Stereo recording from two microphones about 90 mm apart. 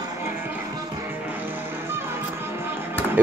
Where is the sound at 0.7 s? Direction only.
40° right (ahead or behind).